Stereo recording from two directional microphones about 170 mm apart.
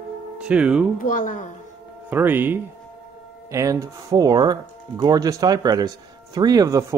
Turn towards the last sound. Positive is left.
turn(degrees=-20)  # may be behind; listen again after turning